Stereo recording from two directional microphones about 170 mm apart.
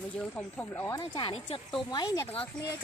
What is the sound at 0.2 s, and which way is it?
Speech, 10° left (ahead or behind).